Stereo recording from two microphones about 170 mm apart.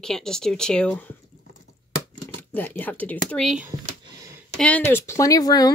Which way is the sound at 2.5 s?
10° left (ahead or behind).